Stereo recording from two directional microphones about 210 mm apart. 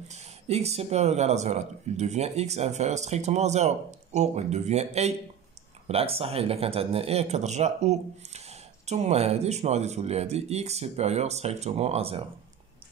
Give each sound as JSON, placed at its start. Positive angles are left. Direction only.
{"t": 0.1, "sound": "speech", "side_deg": -30}